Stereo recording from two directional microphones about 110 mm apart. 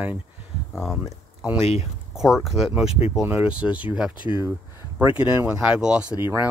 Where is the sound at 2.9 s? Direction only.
70° left (ahead or behind).